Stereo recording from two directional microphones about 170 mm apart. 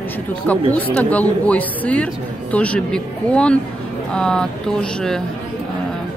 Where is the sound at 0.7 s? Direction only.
10° left (ahead or behind).